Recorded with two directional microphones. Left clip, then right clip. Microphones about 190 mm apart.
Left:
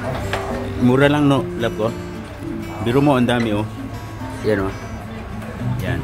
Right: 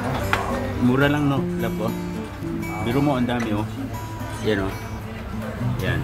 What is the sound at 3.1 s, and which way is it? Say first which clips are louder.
Speech: left 6 dB; 15° left (ahead or behind).